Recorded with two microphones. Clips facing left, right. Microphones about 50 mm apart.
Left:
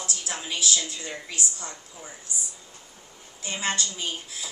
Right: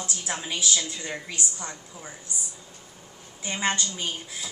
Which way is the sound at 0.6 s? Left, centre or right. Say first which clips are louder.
Even; right.